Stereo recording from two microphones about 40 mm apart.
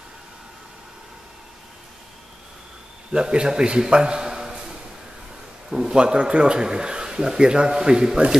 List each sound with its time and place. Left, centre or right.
3.1 s a man's voice: right
3.9 s a sound: right
5.7 s a man's voice: centre